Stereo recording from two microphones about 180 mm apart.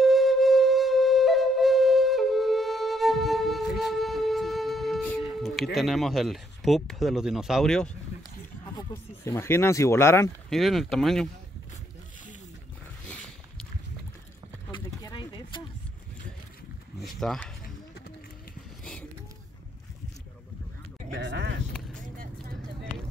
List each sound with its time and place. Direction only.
0.0 s flute: centre (ahead or behind)
5.8 s speech: centre (ahead or behind)
8.7 s speech: 15° left (ahead or behind)
10.5 s speech: centre (ahead or behind)
14.7 s a sound: 25° left (ahead or behind)
17.0 s a sound: centre (ahead or behind)
21.1 s sheep: 75° right (ahead or behind)